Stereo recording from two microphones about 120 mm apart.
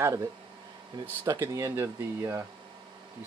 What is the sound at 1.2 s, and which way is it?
Speech, 25° right (ahead or behind).